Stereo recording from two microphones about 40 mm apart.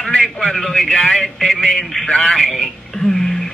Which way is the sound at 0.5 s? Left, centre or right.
Centre.